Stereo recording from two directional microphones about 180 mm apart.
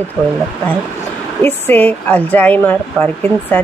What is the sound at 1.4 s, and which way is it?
Speech, 10° left (ahead or behind).